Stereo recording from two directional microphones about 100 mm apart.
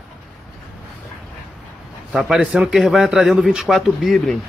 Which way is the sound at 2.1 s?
5° right (ahead or behind).